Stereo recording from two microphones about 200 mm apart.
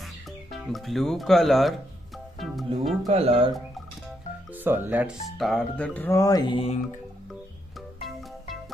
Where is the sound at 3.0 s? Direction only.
30° right (ahead or behind).